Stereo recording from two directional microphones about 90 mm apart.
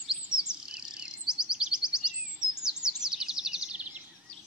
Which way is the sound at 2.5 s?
10° right (ahead or behind).